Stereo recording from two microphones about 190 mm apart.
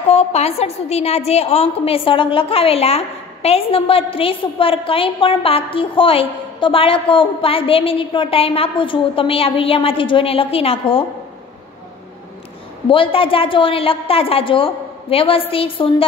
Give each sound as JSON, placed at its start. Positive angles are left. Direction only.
{"t": 0.1, "sound": "a woman's voice", "side_deg": 35}
{"t": 12.8, "sound": "a woman's voice", "side_deg": 25}